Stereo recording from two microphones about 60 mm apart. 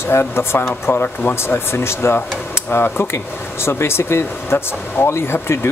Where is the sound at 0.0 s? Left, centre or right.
Left.